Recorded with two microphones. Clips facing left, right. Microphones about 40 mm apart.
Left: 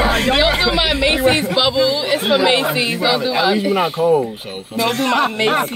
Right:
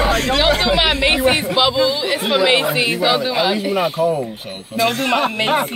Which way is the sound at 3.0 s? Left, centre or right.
Centre.